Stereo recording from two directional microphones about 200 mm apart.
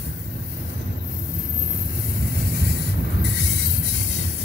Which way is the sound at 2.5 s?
55° left (ahead or behind).